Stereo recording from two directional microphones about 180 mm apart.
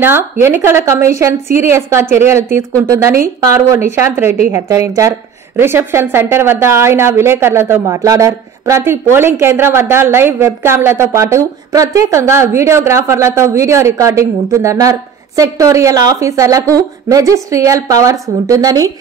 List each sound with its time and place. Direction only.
0.0 s a woman's voice: 10° right (ahead or behind)